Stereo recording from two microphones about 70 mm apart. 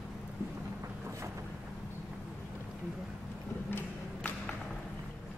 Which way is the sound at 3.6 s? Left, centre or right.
Left.